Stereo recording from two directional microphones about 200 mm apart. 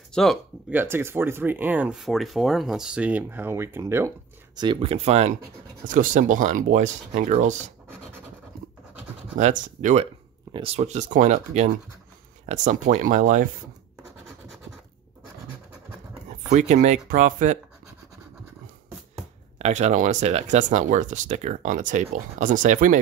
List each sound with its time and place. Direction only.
0.1 s speech: centre (ahead or behind)
0.7 s speech: 10° right (ahead or behind)
4.6 s speech: 25° right (ahead or behind)
9.4 s speech: 40° right (ahead or behind)
16.4 s speech: 35° right (ahead or behind)
19.6 s speech: 35° right (ahead or behind)